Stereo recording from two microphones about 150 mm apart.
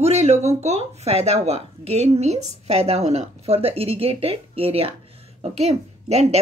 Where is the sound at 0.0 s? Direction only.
45° right (ahead or behind).